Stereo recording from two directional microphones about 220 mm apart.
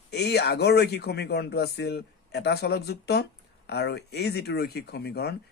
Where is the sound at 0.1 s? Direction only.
50° left (ahead or behind).